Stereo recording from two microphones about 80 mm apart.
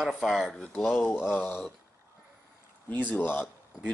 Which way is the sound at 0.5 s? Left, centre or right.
Centre.